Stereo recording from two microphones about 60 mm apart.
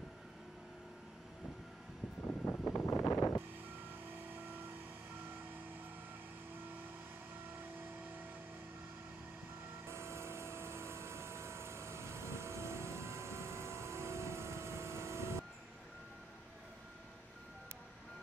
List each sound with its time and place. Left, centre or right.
2.2 s vehicle: left
2.9 s a sound: left
7.5 s vehicle: right
9.8 s vehicle: right